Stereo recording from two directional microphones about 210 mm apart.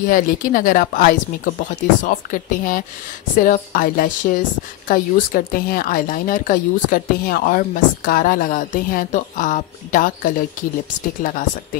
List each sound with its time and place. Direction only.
0.0 s speech: 40° left (ahead or behind)